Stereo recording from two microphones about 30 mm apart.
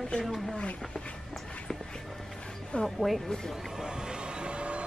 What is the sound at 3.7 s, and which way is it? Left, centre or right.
Music, right.